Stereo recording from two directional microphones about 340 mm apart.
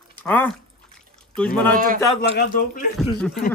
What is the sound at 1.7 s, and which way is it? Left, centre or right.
Speech, right.